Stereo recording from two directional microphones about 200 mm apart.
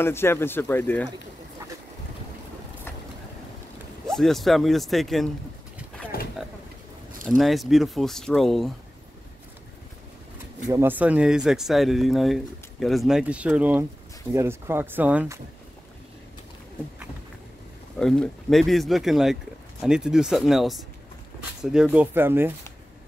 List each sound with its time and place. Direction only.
0.0 s speech: 10° left (ahead or behind)
4.1 s speech: centre (ahead or behind)
6.1 s a sound: 50° left (ahead or behind)
7.2 s speech: centre (ahead or behind)
10.7 s speech: 10° right (ahead or behind)
17.9 s speech: 5° left (ahead or behind)